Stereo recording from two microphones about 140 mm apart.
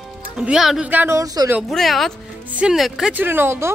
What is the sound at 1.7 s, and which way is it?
Speech, centre (ahead or behind).